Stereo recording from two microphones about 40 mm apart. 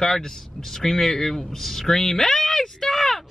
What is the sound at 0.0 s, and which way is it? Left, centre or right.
Speech, centre.